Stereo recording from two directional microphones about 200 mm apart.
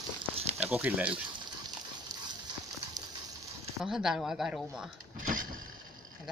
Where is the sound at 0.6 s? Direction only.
10° right (ahead or behind).